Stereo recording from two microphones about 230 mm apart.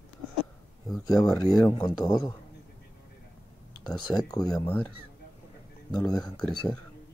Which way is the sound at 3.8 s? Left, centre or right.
Centre.